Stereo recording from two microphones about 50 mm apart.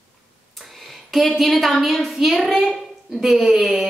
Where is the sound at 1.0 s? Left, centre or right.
Centre.